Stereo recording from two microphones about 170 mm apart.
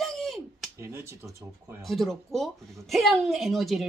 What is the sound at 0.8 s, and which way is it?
Speech, 15° right (ahead or behind).